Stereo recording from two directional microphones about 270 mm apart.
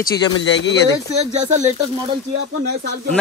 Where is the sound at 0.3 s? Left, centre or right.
Left.